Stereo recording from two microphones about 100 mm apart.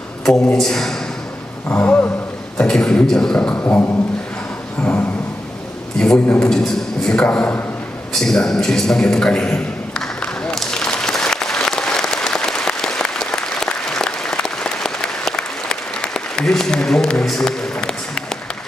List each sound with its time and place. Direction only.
0.2 s speech: 5° left (ahead or behind)
1.7 s a man's voice: 15° left (ahead or behind)
5.9 s a man's voice: 5° left (ahead or behind)
6.2 s a man's voice: 20° left (ahead or behind)
6.5 s a man's voice: 5° left (ahead or behind)
8.1 s a sound: 5° left (ahead or behind)